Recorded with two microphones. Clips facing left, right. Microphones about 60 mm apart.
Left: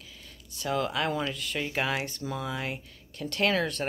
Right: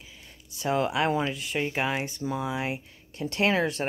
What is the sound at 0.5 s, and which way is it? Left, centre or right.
Speech, right.